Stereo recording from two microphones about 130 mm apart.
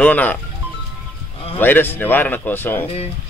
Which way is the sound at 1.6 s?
15° left (ahead or behind).